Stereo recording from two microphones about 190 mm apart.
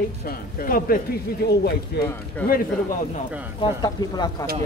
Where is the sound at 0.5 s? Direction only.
50° left (ahead or behind).